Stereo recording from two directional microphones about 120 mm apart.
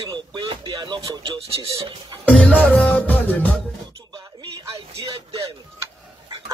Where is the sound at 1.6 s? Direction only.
45° right (ahead or behind).